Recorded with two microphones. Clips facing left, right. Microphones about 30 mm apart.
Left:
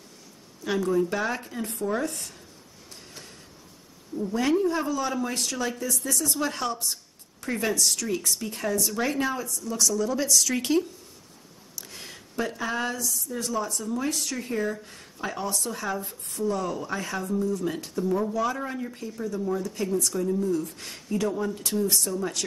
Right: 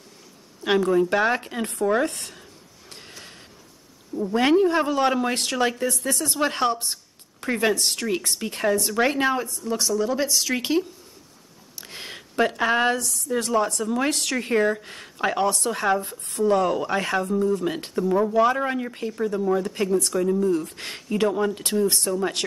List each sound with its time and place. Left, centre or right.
0.7 s speech: right
2.9 s snort: right
4.3 s speech: right
11.7 s a sound: right
13.3 s speech: right
18.0 s speech: right
18.3 s speech: right
20.5 s speech: right